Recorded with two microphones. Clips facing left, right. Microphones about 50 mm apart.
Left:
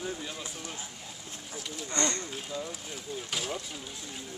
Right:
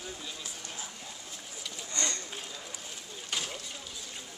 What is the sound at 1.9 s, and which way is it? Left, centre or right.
Speech, left.